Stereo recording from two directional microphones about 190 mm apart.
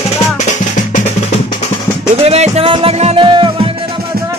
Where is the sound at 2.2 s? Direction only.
30° right (ahead or behind).